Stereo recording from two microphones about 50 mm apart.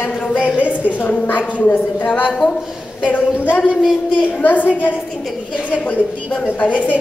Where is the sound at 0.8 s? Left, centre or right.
Left.